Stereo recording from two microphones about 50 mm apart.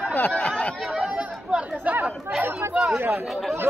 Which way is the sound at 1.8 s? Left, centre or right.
Right.